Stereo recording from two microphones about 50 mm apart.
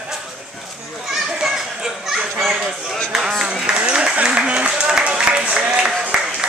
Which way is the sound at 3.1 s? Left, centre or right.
Centre.